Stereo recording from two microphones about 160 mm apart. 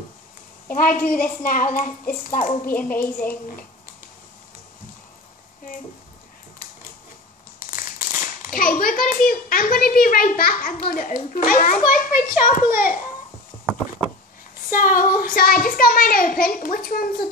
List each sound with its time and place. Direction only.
0.7 s a child's voice: 60° left (ahead or behind)
3.0 s a woman's voice: 10° left (ahead or behind)
8.4 s a child's voice: 60° left (ahead or behind)
14.7 s a child's voice: 60° left (ahead or behind)